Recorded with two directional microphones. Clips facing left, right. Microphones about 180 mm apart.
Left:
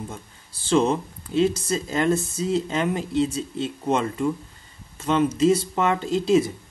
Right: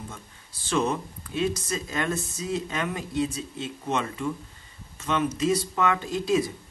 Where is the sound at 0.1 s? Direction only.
30° left (ahead or behind).